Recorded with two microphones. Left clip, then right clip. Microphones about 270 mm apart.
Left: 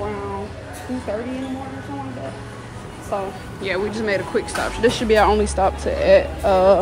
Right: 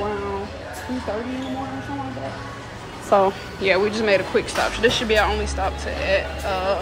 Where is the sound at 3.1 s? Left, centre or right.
Right.